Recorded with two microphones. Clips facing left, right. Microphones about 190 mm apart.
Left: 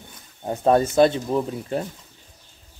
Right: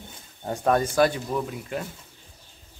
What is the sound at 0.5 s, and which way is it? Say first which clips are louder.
Speech: left 4 dB; 25° left (ahead or behind).